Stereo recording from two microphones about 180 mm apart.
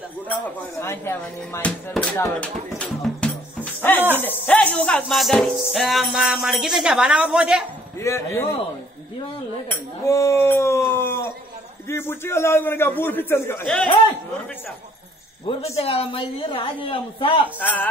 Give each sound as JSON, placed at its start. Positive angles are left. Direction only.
{"t": 0.3, "sound": "a man's voice", "side_deg": 15}
{"t": 2.7, "sound": "music", "side_deg": 5}
{"t": 8.0, "sound": "a man's voice", "side_deg": 15}
{"t": 9.7, "sound": "speech", "side_deg": 15}
{"t": 11.0, "sound": "a sound", "side_deg": 15}
{"t": 11.9, "sound": "a man's voice", "side_deg": 15}
{"t": 15.4, "sound": "a woman's voice", "side_deg": 30}
{"t": 17.6, "sound": "a man's voice", "side_deg": 10}